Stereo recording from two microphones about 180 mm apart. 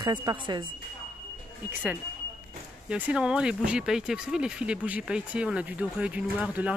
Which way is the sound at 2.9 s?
5° right (ahead or behind).